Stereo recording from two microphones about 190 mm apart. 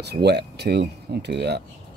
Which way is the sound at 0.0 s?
60° right (ahead or behind).